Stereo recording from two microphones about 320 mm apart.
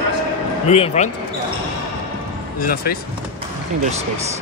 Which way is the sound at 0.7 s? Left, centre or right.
Left.